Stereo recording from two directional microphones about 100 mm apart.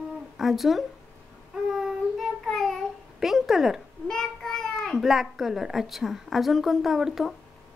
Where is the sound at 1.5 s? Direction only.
Centre (ahead or behind).